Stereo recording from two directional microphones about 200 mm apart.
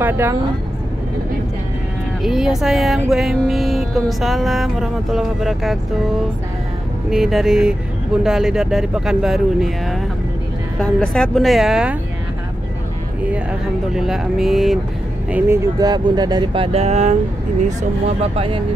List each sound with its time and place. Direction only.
0.0 s speech: 10° right (ahead or behind)
2.2 s music: centre (ahead or behind)
7.1 s music: centre (ahead or behind)
13.3 s music: 5° right (ahead or behind)
15.3 s speech: 10° right (ahead or behind); by 18.6 s 30° right (ahead or behind)